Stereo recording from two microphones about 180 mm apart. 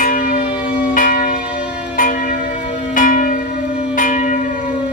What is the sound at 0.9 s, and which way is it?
Church bell, 50° left (ahead or behind).